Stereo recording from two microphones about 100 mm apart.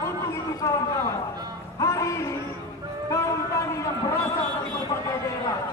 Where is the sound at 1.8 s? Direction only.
35° left (ahead or behind).